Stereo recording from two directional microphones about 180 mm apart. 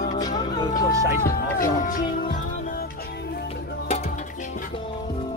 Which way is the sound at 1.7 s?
45° left (ahead or behind).